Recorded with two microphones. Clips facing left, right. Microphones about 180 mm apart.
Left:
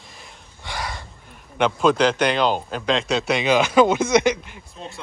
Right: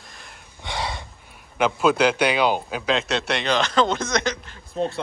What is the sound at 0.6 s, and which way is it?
Gasp, 20° right (ahead or behind).